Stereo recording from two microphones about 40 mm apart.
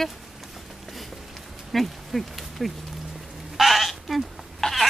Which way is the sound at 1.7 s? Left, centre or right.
Centre.